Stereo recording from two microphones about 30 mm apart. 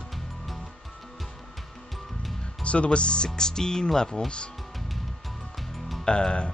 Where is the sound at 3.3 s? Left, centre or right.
Left.